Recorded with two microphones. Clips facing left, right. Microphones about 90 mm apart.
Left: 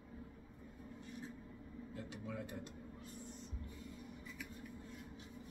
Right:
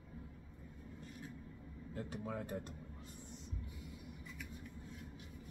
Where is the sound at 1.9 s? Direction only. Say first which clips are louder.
Right 4 dB; 40° right (ahead or behind).